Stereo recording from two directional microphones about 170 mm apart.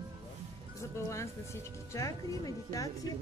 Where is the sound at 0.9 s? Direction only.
15° left (ahead or behind).